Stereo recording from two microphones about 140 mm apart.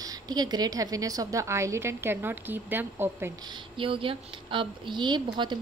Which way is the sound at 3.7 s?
40° right (ahead or behind).